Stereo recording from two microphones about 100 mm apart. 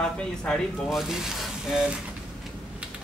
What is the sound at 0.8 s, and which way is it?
Speech, 5° right (ahead or behind).